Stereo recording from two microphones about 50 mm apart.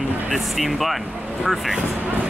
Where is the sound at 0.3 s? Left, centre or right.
Centre.